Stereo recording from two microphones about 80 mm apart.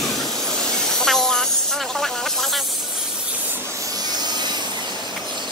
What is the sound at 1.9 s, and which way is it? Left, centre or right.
Snake, centre.